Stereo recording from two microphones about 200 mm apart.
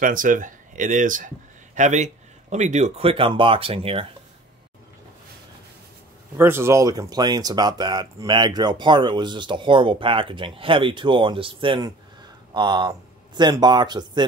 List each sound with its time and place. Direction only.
0.0 s speech: 40° right (ahead or behind)
6.3 s speech: 10° right (ahead or behind)